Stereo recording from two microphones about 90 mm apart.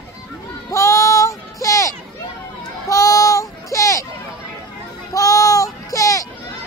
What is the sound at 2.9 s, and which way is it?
Child singing, 35° left (ahead or behind).